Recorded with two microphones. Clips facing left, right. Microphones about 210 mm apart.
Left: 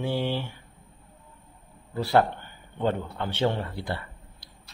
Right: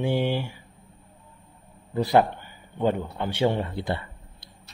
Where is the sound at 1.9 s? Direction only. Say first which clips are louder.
Right 2 dB; 15° right (ahead or behind).